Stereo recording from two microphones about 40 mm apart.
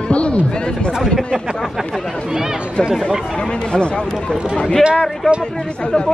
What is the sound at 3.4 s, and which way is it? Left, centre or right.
Speech, left.